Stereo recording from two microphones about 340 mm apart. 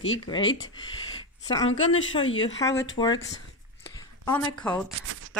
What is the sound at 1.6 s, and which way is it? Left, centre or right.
Speech, left.